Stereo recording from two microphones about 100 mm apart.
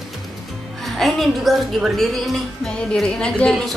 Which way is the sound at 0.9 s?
Centre (ahead or behind).